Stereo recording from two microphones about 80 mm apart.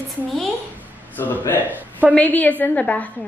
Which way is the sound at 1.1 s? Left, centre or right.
Left.